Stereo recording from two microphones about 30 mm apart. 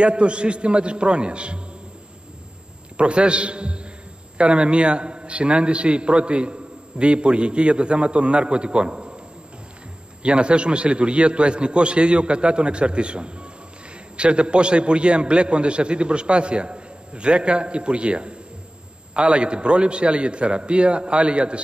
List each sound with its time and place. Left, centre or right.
0.0 s a man's voice: right
3.0 s a man's voice: right
10.2 s a man's voice: right